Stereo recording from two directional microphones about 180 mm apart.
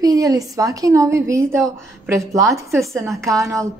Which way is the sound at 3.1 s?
15° right (ahead or behind).